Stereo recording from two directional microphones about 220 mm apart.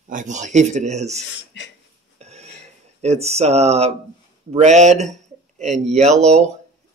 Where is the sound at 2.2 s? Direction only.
30° right (ahead or behind).